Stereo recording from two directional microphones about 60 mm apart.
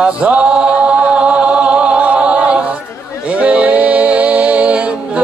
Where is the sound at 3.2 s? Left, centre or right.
Right.